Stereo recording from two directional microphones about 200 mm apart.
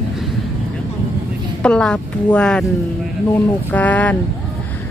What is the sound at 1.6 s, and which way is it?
A woman's voice, 5° left (ahead or behind).